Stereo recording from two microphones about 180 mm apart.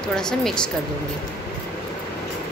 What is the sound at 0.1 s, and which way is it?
Speech, 5° left (ahead or behind).